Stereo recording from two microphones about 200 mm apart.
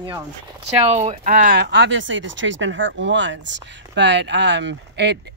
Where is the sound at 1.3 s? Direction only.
45° right (ahead or behind).